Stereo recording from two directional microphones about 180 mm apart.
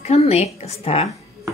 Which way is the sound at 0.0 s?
35° left (ahead or behind).